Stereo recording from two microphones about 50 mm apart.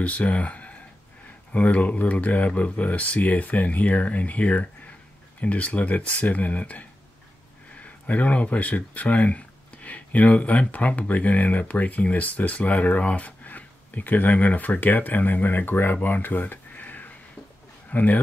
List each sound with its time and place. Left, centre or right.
0.0 s speech: left